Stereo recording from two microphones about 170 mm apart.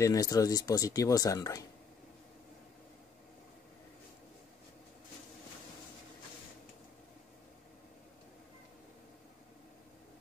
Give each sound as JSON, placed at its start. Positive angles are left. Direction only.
{"t": 0.0, "sound": "speech", "side_deg": 20}